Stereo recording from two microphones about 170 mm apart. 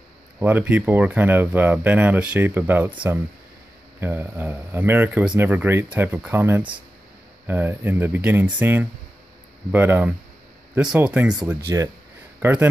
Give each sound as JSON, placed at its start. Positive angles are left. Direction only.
{"t": 0.4, "sound": "speech", "side_deg": -10}
{"t": 11.7, "sound": "speech", "side_deg": -20}